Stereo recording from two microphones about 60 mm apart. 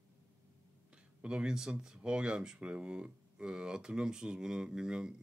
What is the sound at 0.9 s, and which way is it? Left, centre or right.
Speech, centre.